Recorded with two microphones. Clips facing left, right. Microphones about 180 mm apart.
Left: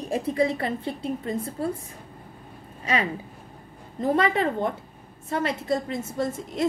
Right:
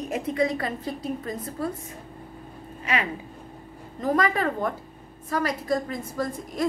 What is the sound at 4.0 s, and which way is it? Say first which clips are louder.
A woman's voice: left 1 dB; 30° left (ahead or behind).